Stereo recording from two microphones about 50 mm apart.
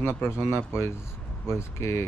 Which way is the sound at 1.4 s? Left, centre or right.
Left.